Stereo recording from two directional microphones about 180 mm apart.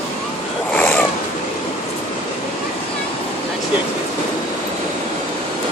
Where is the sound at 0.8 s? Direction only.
10° left (ahead or behind).